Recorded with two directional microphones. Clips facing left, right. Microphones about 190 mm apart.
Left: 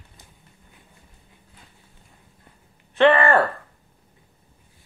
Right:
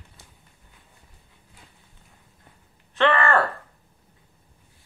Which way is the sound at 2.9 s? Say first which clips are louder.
Left 4 dB; 15° left (ahead or behind).